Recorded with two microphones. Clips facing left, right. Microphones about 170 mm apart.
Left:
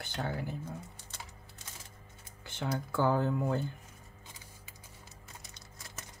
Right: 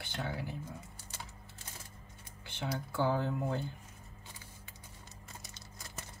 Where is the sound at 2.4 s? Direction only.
50° left (ahead or behind).